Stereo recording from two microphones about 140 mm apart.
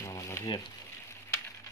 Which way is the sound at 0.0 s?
20° left (ahead or behind).